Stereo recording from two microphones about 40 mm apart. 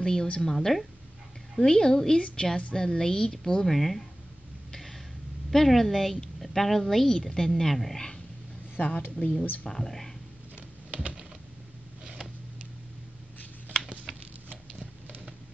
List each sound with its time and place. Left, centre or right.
0.0 s a woman's voice: centre
1.6 s a woman's voice: centre
4.7 s a sound: centre
5.5 s a woman's voice: centre
8.7 s speech: left
9.7 s speech: centre
12.0 s a sound: centre